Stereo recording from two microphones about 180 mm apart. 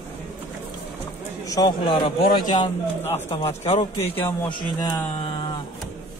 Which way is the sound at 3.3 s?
35° left (ahead or behind).